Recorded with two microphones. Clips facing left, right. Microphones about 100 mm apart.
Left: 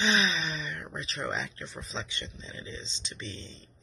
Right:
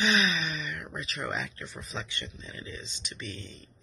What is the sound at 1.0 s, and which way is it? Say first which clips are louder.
Speech: left 1 dB; 25° left (ahead or behind).